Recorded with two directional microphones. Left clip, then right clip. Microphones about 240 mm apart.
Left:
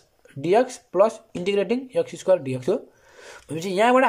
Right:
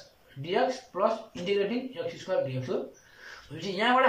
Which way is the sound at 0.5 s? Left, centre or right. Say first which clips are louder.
Left 7 dB; left.